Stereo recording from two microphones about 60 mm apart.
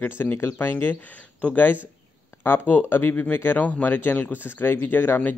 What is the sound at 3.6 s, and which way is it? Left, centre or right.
A man's voice, left.